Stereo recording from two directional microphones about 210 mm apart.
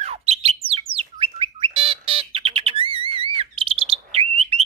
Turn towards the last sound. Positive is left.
turn(degrees=-30)  # may be behind; listen again after turning